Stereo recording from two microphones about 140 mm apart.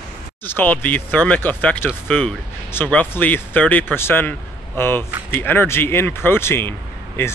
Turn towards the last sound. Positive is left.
turn(degrees=15)  # may be behind; listen again after turning